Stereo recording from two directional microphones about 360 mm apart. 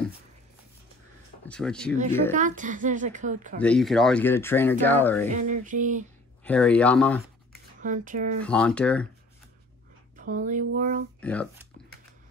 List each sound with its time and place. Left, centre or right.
1.4 s speech: centre
2.3 s speech: right
3.6 s speech: centre
5.3 s speech: right
6.4 s speech: centre
7.8 s speech: right
8.4 s speech: centre
10.1 s speech: right
11.1 s speech: centre